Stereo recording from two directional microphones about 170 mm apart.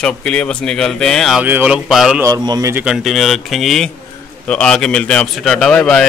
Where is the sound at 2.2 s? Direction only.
20° right (ahead or behind).